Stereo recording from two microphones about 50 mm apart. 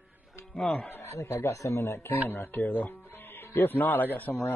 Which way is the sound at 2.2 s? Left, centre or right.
Left.